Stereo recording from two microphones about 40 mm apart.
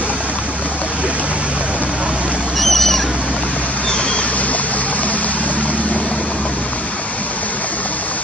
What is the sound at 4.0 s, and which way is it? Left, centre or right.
Vehicle, left.